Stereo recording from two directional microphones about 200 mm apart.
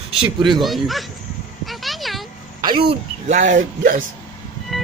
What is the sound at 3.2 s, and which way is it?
Speech, 40° right (ahead or behind).